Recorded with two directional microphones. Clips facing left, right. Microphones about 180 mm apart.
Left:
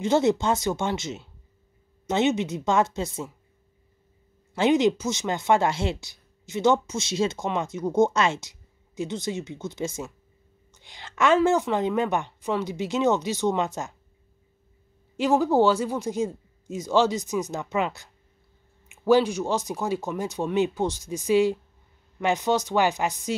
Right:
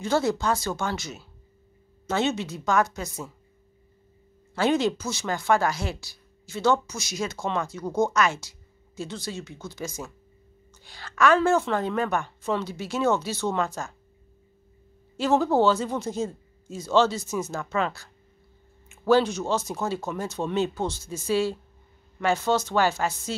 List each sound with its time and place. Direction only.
0.0 s speech: 20° left (ahead or behind)
4.6 s a woman's voice: 20° left (ahead or behind)
15.1 s speech: 15° left (ahead or behind)